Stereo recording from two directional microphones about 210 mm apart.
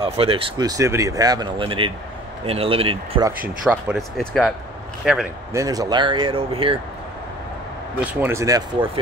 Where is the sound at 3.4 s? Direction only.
5° right (ahead or behind).